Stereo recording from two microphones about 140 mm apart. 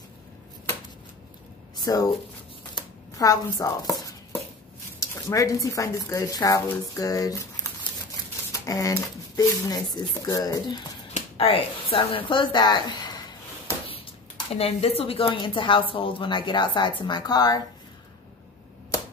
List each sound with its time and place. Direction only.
1.9 s speech: 25° left (ahead or behind)
2.7 s chopping: 25° left (ahead or behind)
5.0 s speech: 25° left (ahead or behind)
11.1 s a sound: 45° left (ahead or behind)
12.1 s speech: 40° left (ahead or behind)
13.8 s speech: 40° left (ahead or behind)